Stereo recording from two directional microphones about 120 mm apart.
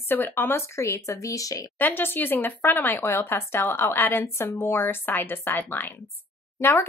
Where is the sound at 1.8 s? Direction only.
15° left (ahead or behind).